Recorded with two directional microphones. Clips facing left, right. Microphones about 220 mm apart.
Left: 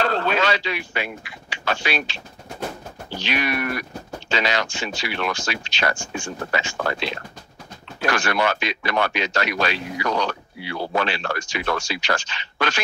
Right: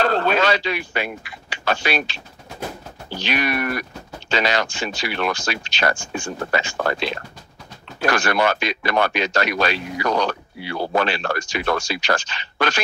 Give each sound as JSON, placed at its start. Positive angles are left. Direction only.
{"t": 0.0, "sound": "speech", "side_deg": -45}
{"t": 3.3, "sound": "speech", "side_deg": -45}